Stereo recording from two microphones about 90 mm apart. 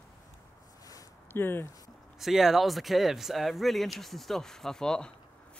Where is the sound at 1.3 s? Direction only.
25° left (ahead or behind).